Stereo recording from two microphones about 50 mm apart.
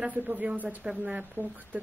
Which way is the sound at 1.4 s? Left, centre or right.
Right.